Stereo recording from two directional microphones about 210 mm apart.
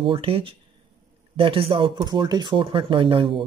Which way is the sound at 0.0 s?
25° right (ahead or behind).